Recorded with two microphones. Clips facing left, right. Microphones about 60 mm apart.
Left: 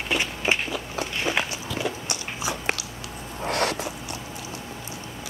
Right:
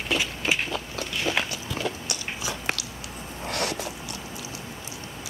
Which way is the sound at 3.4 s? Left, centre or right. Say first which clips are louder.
Left 4 dB; left.